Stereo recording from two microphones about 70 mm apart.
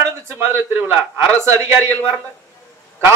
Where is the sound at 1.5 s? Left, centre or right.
Right.